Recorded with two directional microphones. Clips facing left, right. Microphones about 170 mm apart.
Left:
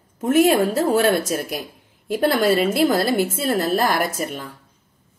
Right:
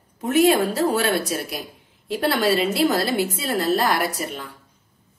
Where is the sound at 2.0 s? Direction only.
45° left (ahead or behind).